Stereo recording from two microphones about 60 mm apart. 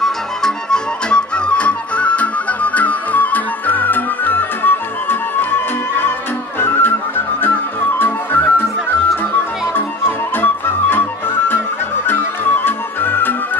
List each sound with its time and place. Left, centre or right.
0.0 s music: centre; by 6.9 s left
8.0 s music: left
9.8 s music: left
12.6 s music: left